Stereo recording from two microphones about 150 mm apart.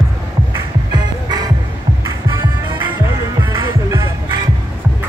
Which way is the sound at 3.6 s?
25° right (ahead or behind).